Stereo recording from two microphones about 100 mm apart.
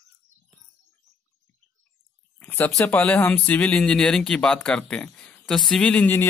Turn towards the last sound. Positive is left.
turn(degrees=15)  # may be behind; listen again after turning